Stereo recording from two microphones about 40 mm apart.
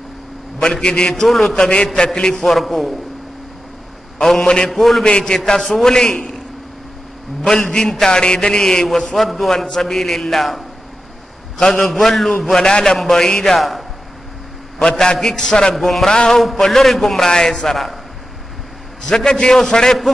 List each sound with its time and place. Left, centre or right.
0.6 s a man's voice: centre
1.2 s a man's voice: centre
2.0 s a man's voice: left
2.3 s a man's voice: centre
4.2 s a man's voice: centre
5.0 s a man's voice: centre
7.4 s a man's voice: centre
8.8 s a man's voice: centre
13.6 s a man's voice: centre
14.8 s a man's voice: centre
15.7 s a man's voice: centre
19.0 s a man's voice: centre